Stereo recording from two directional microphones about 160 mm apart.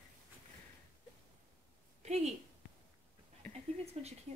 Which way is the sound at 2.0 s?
45° right (ahead or behind).